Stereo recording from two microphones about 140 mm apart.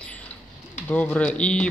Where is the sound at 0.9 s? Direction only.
10° left (ahead or behind).